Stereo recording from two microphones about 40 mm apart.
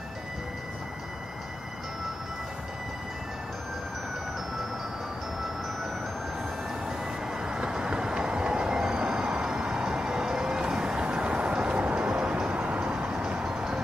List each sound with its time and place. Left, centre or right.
6.9 s vehicle: centre; by 12.9 s right
13.4 s music: centre